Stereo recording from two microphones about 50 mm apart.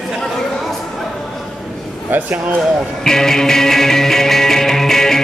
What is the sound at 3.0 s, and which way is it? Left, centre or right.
Music, centre.